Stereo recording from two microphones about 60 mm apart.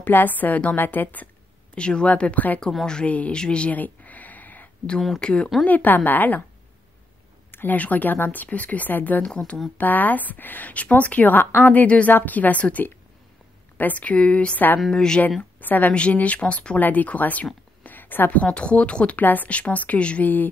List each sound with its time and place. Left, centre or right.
0.0 s a woman's voice: left
1.8 s a woman's voice: centre
2.7 s speech: centre
3.1 s a woman's voice: left
3.3 s a sound: centre
5.2 s speech: centre
5.7 s a woman's voice: left
7.5 s a woman's voice: left
15.6 s a woman's voice: left
17.8 s a sound: left
18.4 s a woman's voice: centre